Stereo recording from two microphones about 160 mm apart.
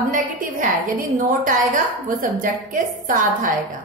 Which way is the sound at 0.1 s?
55° right (ahead or behind).